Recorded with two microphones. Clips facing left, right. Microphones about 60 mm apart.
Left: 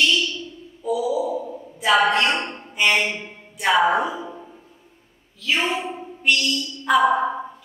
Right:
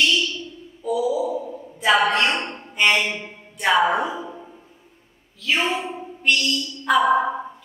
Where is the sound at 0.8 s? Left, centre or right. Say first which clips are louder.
Even; centre.